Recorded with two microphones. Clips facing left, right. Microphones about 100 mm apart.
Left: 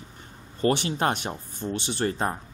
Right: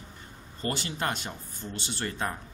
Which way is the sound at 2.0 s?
35° left (ahead or behind).